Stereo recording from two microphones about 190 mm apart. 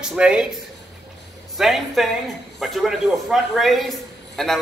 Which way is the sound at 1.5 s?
Centre (ahead or behind).